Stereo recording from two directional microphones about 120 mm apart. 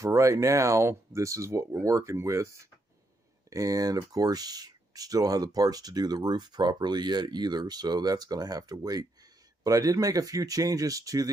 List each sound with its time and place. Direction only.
0.0 s speech: 25° right (ahead or behind)